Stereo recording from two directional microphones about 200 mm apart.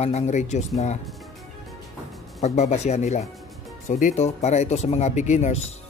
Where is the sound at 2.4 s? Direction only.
35° left (ahead or behind).